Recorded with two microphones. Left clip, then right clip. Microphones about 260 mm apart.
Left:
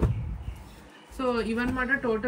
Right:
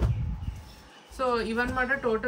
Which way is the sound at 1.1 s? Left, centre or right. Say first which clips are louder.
Right 1 dB; right.